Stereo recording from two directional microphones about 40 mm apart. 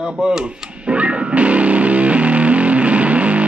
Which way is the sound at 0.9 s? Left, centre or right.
Right.